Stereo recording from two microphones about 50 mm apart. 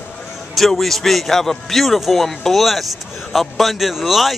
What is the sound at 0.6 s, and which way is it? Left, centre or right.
Speech, centre.